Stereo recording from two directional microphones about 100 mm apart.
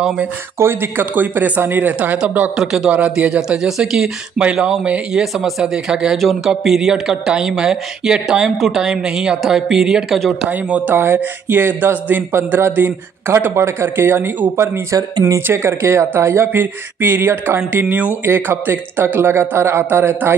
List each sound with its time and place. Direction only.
0.6 s speech: 25° right (ahead or behind); by 10.5 s centre (ahead or behind)
10.5 s speech: 15° right (ahead or behind)
15.0 s speech: 40° right (ahead or behind)
15.4 s speech: 25° right (ahead or behind)